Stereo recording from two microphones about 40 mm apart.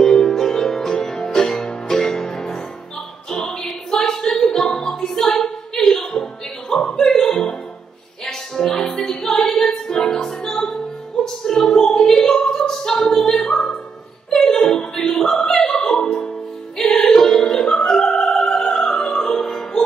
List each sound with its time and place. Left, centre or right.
0.0 s music: centre
3.4 s a sound: centre
4.6 s music: left
5.0 s a sound: centre
6.7 s music: centre
11.2 s opera: centre
14.3 s a sound: centre
15.1 s opera: centre
18.8 s music: centre